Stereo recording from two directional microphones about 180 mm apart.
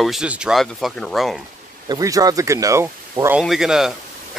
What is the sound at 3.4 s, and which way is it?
Speech, centre (ahead or behind).